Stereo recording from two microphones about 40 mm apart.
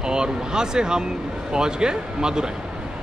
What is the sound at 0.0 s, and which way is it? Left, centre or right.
Speech, centre.